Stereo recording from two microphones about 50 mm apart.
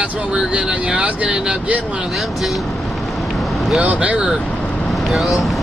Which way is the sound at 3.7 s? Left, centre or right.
Right.